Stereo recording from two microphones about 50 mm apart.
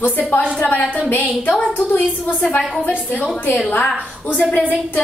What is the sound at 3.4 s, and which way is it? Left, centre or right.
A woman's voice, left.